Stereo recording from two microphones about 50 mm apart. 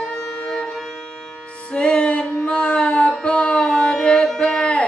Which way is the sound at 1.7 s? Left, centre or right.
Left.